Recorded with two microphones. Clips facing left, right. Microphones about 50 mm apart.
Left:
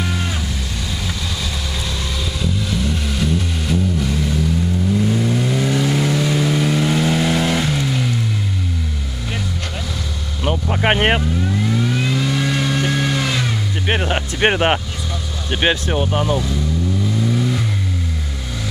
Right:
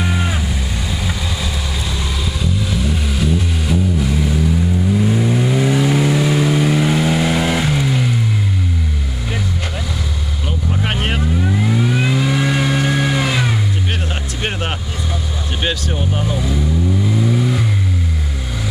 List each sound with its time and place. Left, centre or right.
0.0 s music: centre
2.6 s vehicle: centre
10.4 s vehicle: left
11.4 s vehicle: centre
13.8 s music: left
15.6 s speech: left
17.2 s vehicle: centre